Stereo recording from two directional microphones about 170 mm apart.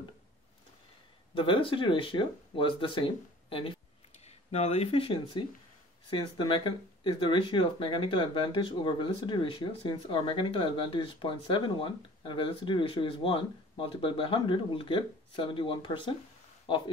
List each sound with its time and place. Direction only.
1.3 s speech: 30° left (ahead or behind)